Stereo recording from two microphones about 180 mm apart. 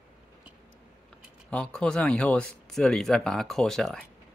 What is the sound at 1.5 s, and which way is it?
Speech, 5° left (ahead or behind).